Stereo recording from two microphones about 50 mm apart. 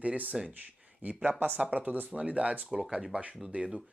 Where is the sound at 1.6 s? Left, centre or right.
Right.